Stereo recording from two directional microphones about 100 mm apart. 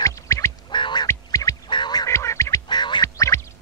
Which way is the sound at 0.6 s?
50° left (ahead or behind).